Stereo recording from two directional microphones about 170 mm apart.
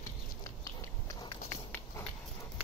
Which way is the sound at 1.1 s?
15° left (ahead or behind).